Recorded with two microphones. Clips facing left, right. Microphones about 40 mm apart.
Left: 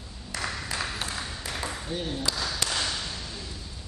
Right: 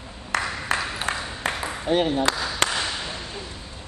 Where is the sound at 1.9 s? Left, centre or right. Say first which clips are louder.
Right 13 dB; right.